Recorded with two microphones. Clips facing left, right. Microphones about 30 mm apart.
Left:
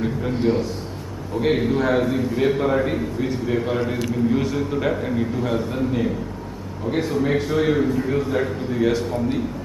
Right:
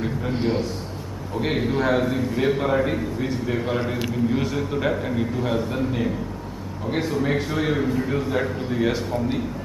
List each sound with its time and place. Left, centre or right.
0.3 s a man's voice: centre
1.3 s a man's voice: centre